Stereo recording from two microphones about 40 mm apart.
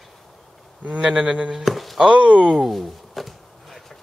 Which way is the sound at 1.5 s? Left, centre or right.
Centre.